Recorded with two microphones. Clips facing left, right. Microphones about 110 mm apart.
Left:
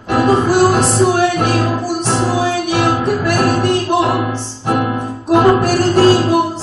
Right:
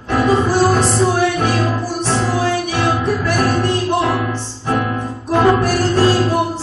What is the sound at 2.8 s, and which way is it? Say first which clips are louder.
Music: left 3 dB; 10° left (ahead or behind).